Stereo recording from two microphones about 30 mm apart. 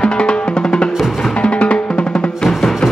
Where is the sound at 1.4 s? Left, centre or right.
Left.